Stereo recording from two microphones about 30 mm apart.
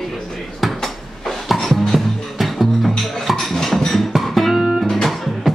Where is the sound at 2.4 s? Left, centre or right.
Centre.